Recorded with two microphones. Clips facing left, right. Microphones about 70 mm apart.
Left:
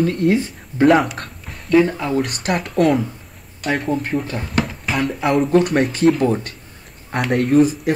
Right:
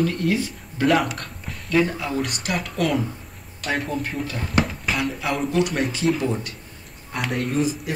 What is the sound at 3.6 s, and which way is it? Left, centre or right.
Speech, centre.